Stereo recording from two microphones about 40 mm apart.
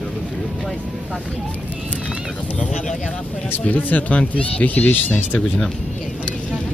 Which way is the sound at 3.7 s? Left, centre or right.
Left.